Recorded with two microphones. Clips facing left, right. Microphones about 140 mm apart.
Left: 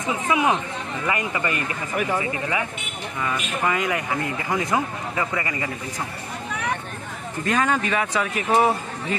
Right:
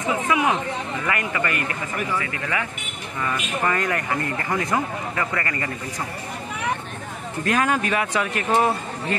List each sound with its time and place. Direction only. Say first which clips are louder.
0.3 s speech: left 2 dB; 25° left (ahead or behind)
3.2 s speech: right 1 dB; 10° left (ahead or behind)
7.5 s a man's voice: even; 5° right (ahead or behind)